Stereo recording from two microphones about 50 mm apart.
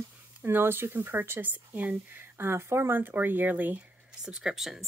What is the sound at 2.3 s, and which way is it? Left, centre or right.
Speech, right.